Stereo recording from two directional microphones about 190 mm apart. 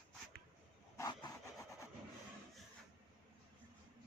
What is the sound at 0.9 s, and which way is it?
Wood, 20° left (ahead or behind).